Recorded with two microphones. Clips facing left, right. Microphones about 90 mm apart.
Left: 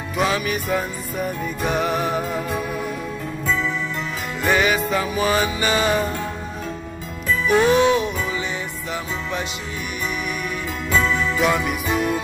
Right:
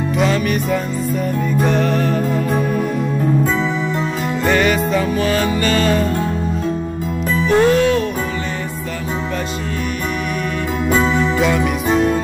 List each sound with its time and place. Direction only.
0.2 s jingle bell: 5° left (ahead or behind)
1.7 s music: 10° left (ahead or behind)
4.5 s music: 5° left (ahead or behind)
7.4 s music: 10° left (ahead or behind)
10.9 s music: 35° right (ahead or behind)
11.4 s jingle bell: 5° left (ahead or behind)